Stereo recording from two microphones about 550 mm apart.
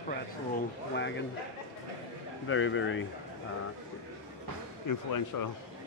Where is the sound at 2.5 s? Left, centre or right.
Left.